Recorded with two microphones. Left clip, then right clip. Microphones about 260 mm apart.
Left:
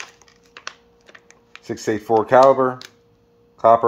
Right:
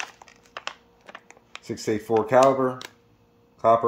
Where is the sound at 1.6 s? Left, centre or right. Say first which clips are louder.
Left 5 dB; centre.